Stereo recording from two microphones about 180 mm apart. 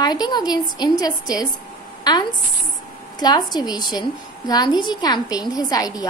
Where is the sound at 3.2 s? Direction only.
25° left (ahead or behind).